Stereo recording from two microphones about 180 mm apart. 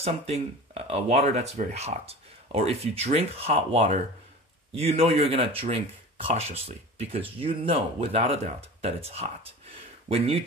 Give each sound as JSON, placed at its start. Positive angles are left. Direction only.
{"t": 0.0, "sound": "speech", "side_deg": -35}